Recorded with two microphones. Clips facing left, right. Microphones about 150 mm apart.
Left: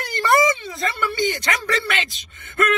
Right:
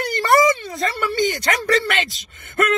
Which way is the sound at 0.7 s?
40° right (ahead or behind).